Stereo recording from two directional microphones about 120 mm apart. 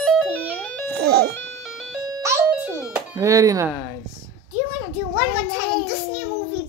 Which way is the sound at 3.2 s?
30° right (ahead or behind).